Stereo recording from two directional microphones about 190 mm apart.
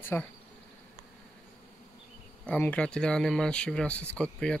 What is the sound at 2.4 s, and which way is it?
Speech, 5° left (ahead or behind).